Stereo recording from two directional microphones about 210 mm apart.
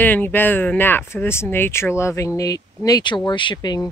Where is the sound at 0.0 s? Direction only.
10° left (ahead or behind).